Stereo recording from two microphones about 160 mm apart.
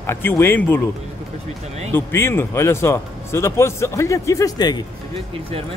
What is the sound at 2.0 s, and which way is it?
Speech, 15° left (ahead or behind).